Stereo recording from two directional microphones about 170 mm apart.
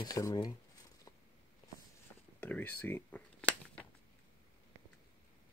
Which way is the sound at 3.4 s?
10° left (ahead or behind).